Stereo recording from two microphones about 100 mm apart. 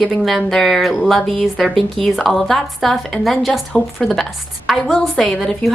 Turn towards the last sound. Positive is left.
turn(degrees=0)  # may be behind; listen again after turning